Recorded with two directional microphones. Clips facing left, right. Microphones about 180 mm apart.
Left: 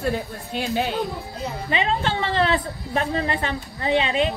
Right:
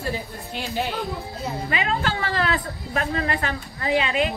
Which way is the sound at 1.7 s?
30° left (ahead or behind).